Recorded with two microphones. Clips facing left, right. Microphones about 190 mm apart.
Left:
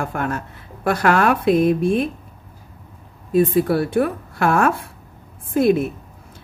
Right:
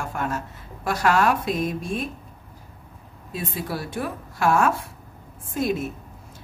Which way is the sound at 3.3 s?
55° left (ahead or behind).